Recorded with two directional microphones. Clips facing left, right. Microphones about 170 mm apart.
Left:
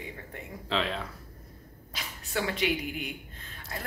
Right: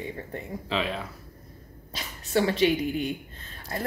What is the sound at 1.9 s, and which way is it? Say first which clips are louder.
Speech: right 8 dB; 30° right (ahead or behind).